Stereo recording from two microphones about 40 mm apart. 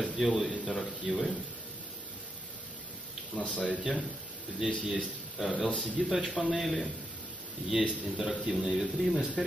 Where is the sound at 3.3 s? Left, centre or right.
Left.